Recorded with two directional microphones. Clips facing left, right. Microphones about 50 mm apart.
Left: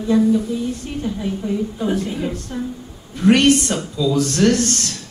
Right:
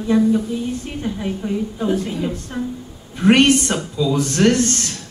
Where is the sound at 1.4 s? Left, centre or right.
Right.